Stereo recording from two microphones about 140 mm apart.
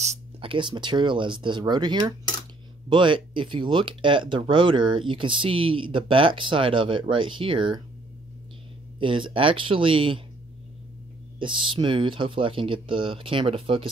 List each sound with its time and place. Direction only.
0.0 s a sound: 55° right (ahead or behind)
0.5 s speech: 35° right (ahead or behind)
9.0 s speech: 35° right (ahead or behind)
11.3 s speech: 35° right (ahead or behind)